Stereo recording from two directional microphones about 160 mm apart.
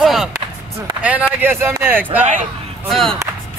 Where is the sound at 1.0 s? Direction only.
10° right (ahead or behind).